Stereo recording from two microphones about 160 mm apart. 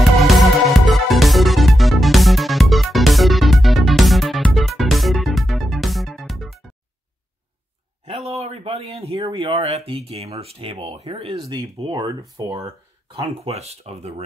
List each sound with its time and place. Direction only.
0.2 s music: centre (ahead or behind)
8.0 s speech: 40° right (ahead or behind)
12.1 s speech: 25° right (ahead or behind)
12.6 s speech: 40° right (ahead or behind)